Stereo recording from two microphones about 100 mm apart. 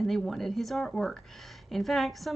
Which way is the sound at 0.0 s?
Centre (ahead or behind).